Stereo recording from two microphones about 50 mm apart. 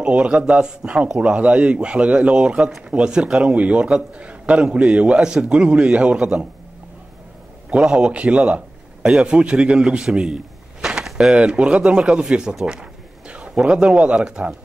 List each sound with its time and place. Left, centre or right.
0.0 s a man's voice: right
7.7 s a man's voice: centre
11.3 s speech: right